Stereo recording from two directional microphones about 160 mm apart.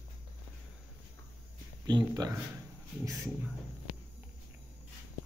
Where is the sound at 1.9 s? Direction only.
25° right (ahead or behind).